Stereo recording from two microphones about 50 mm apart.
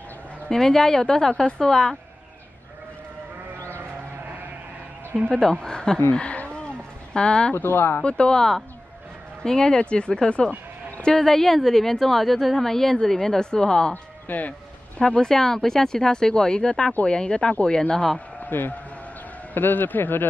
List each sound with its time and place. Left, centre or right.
0.5 s a woman's voice: centre
5.4 s a woman's voice: centre
6.1 s a sound: left
7.2 s a woman's voice: centre
7.5 s speech: left
8.0 s a woman's voice: left
14.2 s speech: left
15.0 s a woman's voice: centre
18.4 s a sound: left
19.5 s a man's voice: left